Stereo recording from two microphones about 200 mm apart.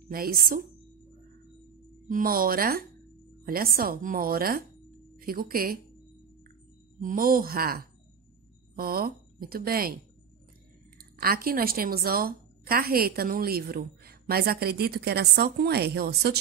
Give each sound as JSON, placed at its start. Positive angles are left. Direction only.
{"t": 0.1, "sound": "a woman's voice", "side_deg": -45}
{"t": 2.0, "sound": "a woman's voice", "side_deg": -45}
{"t": 7.0, "sound": "a woman's voice", "side_deg": -45}
{"t": 11.0, "sound": "a woman's voice", "side_deg": -50}